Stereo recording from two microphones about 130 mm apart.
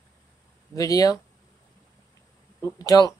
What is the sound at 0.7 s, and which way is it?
Speech, 25° left (ahead or behind).